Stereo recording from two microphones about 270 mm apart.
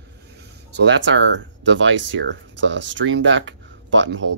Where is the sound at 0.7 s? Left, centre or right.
Right.